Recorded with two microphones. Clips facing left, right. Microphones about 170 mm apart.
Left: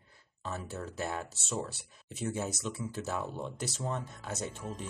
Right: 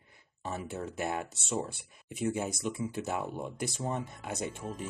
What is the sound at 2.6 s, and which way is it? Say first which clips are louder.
Speech: right 3 dB; 20° right (ahead or behind).